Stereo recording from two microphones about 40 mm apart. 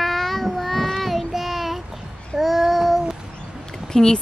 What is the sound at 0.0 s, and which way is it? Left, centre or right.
Child singing, centre.